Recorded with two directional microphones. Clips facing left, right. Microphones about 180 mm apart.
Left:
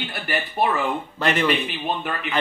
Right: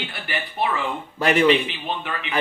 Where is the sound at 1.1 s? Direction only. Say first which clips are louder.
Right 5 dB; 10° right (ahead or behind).